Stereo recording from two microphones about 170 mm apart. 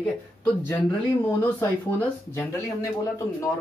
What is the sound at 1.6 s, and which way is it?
Speech, 15° left (ahead or behind).